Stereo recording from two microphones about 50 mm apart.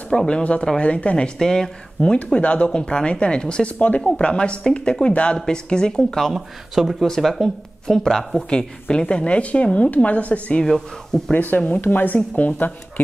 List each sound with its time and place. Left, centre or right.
0.1 s speech: centre
0.4 s a woman's voice: left
2.0 s a woman's voice: left; by 6.3 s centre
6.3 s speech: centre
8.5 s a woman's voice: centre
11.1 s speech: centre
11.5 s speech: left